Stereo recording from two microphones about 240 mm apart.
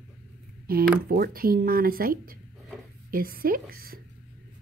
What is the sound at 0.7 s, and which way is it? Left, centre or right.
A woman's voice, right.